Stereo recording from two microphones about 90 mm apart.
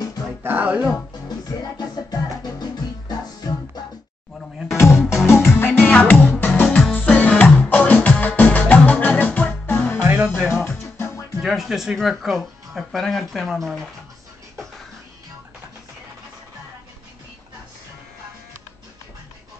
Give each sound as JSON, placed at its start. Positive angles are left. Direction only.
{"t": 0.4, "sound": "music", "side_deg": -20}
{"t": 1.5, "sound": "music", "side_deg": 45}
{"t": 4.7, "sound": "music", "side_deg": 30}
{"t": 10.0, "sound": "music", "side_deg": -10}
{"t": 10.5, "sound": "music", "side_deg": 25}
{"t": 11.4, "sound": "speech", "side_deg": -5}